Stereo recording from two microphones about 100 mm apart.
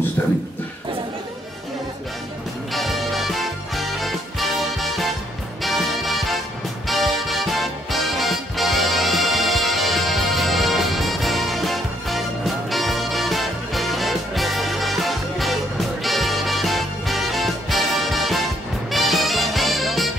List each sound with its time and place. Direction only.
2.7 s music: centre (ahead or behind)